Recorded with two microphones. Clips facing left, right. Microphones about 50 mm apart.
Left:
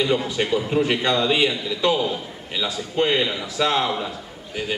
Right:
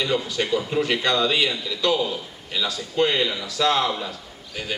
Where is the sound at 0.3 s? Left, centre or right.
Left.